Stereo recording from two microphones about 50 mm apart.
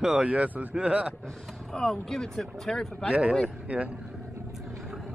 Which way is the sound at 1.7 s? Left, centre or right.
Centre.